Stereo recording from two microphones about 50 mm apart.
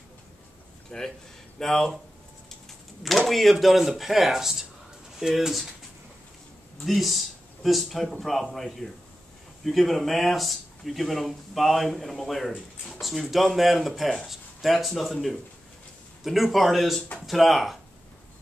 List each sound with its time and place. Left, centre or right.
0.8 s a man's voice: centre
3.0 s speech: centre
6.8 s speech: centre
16.3 s speech: centre